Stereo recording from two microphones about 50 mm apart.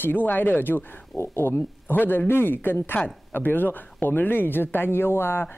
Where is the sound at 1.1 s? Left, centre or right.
Left.